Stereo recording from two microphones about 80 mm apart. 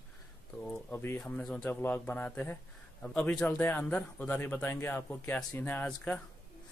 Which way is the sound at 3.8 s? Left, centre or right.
Centre.